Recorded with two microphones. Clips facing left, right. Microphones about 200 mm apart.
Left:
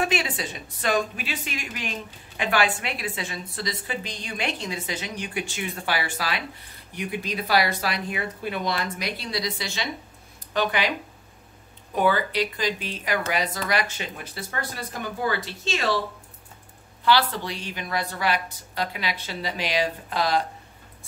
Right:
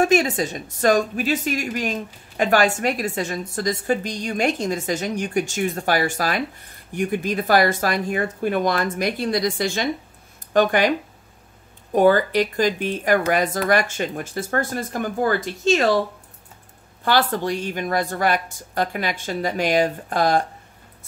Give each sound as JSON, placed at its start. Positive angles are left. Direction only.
{"t": 0.0, "sound": "a woman's voice", "side_deg": -45}
{"t": 11.9, "sound": "a woman's voice", "side_deg": -45}
{"t": 17.0, "sound": "a woman's voice", "side_deg": -50}